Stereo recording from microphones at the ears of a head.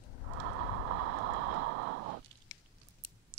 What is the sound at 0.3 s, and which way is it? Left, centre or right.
Vehicle, right.